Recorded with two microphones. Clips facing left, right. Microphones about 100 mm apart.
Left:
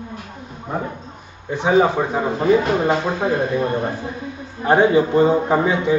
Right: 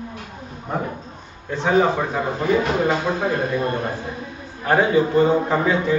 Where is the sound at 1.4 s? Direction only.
15° left (ahead or behind).